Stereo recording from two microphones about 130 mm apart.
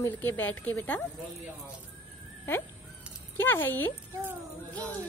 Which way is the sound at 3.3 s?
15° left (ahead or behind).